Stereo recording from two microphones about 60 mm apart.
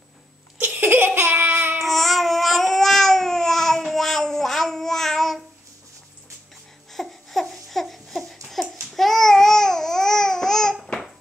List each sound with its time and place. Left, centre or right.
0.7 s laughter: right
1.8 s babbling: centre
6.9 s a sound: centre
8.5 s babbling: centre